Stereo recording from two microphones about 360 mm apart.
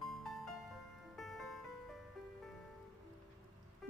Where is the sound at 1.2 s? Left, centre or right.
Centre.